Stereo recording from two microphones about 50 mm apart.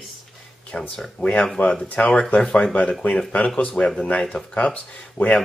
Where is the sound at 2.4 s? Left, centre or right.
Centre.